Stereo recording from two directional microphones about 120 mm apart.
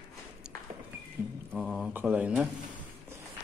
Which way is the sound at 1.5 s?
5° right (ahead or behind).